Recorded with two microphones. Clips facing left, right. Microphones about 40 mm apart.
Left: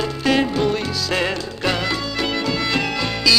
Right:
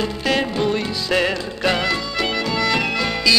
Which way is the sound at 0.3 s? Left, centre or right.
Centre.